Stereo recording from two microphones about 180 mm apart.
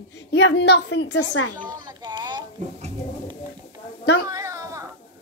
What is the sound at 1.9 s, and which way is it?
Speech, 25° right (ahead or behind).